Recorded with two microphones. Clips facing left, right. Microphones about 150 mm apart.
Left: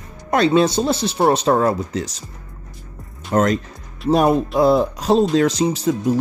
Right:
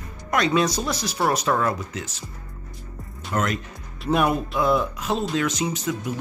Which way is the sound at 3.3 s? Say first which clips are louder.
Left 8 dB; 35° left (ahead or behind).